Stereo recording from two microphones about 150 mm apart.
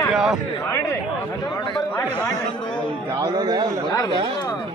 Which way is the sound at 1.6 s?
30° left (ahead or behind).